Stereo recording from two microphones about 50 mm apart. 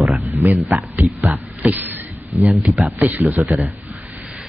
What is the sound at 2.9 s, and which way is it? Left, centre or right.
Speech, right.